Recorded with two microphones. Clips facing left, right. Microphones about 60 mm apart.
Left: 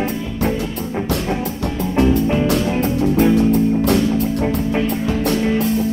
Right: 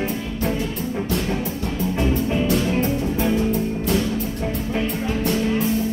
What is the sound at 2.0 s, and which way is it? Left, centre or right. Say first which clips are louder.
Music: left 7 dB; left.